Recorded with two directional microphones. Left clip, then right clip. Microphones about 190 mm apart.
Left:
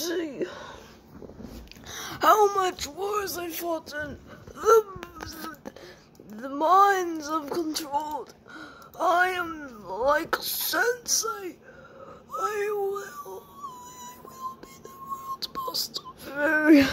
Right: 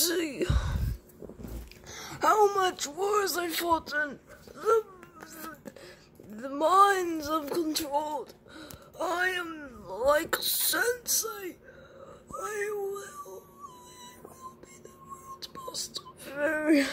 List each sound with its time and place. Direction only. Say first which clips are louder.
0.0 s a sound: right 1 dB; 5° right (ahead or behind)
1.9 s a woman's voice: left 5 dB; 10° left (ahead or behind)
3.0 s a man's voice: right 3 dB; 15° right (ahead or behind)
3.8 s speech: right 4 dB; 5° right (ahead or behind)
4.6 s babbling: left 6 dB; 20° left (ahead or behind)
5.2 s a sound: left 2 dB; 15° left (ahead or behind)
6.3 s speech: left 3 dB; 5° left (ahead or behind)
12.4 s dog: left 6 dB; 15° left (ahead or behind)
15.3 s wail: left 7 dB; 15° left (ahead or behind)